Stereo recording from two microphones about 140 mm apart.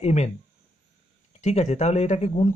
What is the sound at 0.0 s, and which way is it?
Speech, 55° left (ahead or behind).